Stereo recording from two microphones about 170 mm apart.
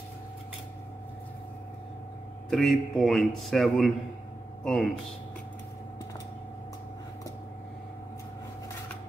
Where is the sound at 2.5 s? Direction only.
Centre (ahead or behind).